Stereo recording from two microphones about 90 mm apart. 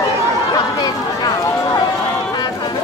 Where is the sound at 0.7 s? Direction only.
45° left (ahead or behind).